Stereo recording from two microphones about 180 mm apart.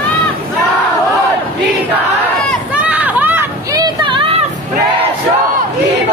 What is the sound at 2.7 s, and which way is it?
Run, 10° right (ahead or behind).